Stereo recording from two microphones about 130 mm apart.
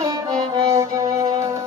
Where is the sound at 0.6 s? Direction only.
20° right (ahead or behind).